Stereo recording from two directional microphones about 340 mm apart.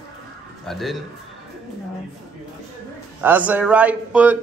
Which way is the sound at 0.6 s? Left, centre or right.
Centre.